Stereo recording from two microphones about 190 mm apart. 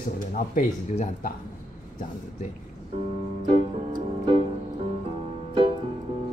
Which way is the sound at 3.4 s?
25° right (ahead or behind).